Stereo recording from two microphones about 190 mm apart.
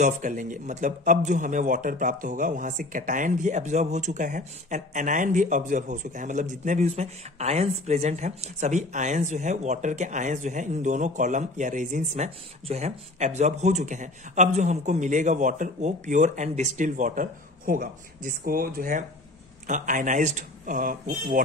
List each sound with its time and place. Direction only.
0.0 s speech: 40° right (ahead or behind)